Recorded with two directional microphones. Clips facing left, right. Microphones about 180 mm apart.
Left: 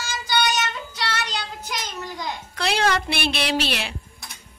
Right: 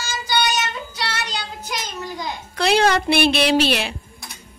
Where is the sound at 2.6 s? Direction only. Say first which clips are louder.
Right 5 dB; 20° right (ahead or behind).